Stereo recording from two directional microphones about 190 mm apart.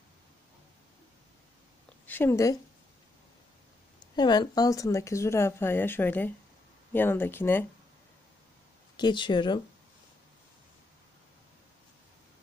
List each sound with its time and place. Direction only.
2.0 s a woman's voice: 10° left (ahead or behind)
4.1 s speech: 20° left (ahead or behind)
8.9 s speech: 25° left (ahead or behind)